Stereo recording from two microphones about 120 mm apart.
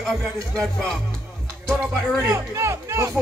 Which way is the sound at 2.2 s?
25° right (ahead or behind).